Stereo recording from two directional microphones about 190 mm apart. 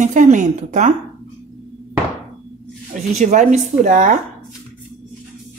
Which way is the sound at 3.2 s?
40° right (ahead or behind).